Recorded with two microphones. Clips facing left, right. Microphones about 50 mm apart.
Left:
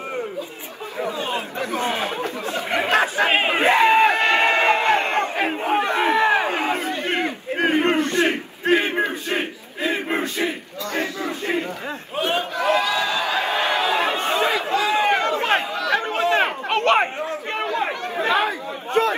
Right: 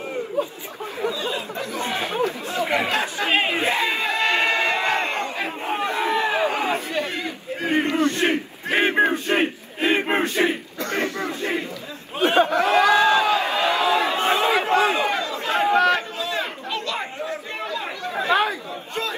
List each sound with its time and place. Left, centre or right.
1.2 s chatter: left
2.8 s speech: left
3.4 s crowd: left
7.1 s battle cry: left
8.7 s a sound: right
11.2 s crowd: left
12.2 s a sound: right
12.7 s crowd: right
13.3 s a sound: left
14.5 s a sound: right
15.0 s crowd: left
15.6 s chatter: right
15.9 s chatter: left
19.0 s crowd: left